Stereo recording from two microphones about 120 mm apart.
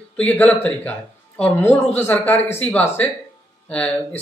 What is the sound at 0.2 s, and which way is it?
Speech, 15° left (ahead or behind).